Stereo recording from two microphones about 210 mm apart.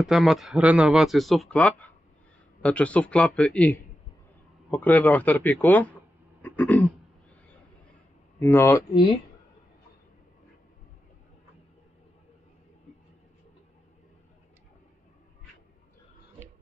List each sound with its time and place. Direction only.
0.0 s speech: centre (ahead or behind)
6.4 s throat clearing: 10° left (ahead or behind)
8.4 s speech: 10° left (ahead or behind)